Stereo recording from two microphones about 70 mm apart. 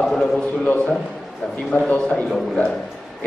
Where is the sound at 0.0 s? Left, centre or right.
Centre.